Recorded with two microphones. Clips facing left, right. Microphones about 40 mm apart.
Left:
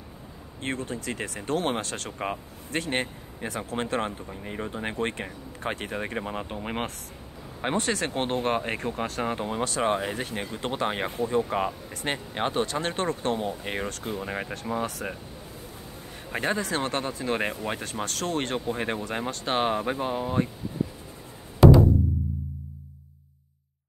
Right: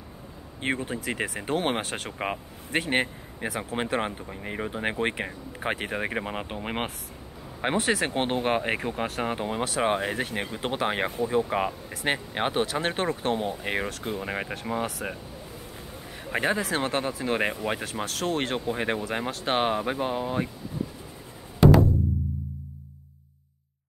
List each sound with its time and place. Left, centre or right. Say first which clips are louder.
0.6 s speech: right 3 dB; centre
12.1 s speech: right 2 dB; centre
16.3 s speech: right 2 dB; centre